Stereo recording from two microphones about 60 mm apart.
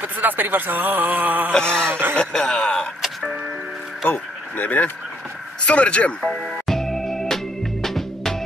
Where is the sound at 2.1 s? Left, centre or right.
Centre.